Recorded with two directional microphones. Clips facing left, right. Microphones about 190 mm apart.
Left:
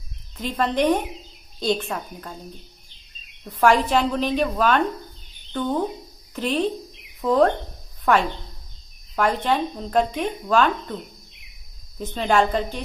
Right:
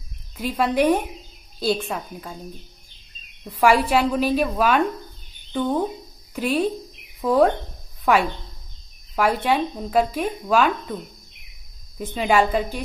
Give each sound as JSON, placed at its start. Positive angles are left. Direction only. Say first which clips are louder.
{"t": 0.4, "sound": "a woman's voice", "louder": "right 2 dB", "side_deg": -10}
{"t": 3.4, "sound": "a woman's voice", "louder": "even", "side_deg": -10}
{"t": 12.0, "sound": "a woman's voice", "louder": "right 1 dB", "side_deg": -10}